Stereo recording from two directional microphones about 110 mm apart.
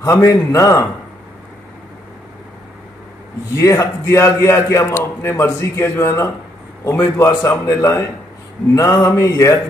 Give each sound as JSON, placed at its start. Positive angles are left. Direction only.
{"t": 0.0, "sound": "a man's voice", "side_deg": 30}
{"t": 3.5, "sound": "a man's voice", "side_deg": 30}